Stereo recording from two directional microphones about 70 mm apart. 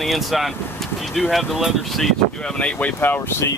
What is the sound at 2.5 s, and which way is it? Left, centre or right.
Speech, centre.